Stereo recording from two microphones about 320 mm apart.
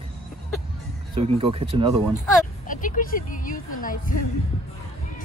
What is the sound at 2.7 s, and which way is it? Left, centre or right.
Speech, left.